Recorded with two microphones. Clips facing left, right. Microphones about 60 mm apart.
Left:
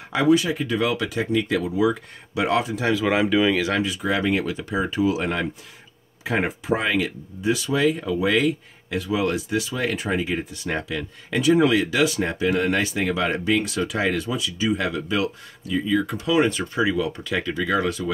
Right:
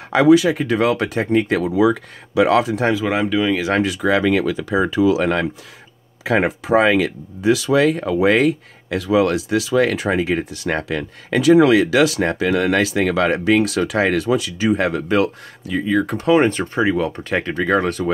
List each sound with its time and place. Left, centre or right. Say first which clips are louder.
0.1 s speech: right 6 dB; right
1.7 s speech: right 5 dB; right
3.0 s speech: right 1 dB; centre
3.8 s speech: right 6 dB; right
6.2 s speech: right 6 dB; right
8.9 s speech: right 7 dB; right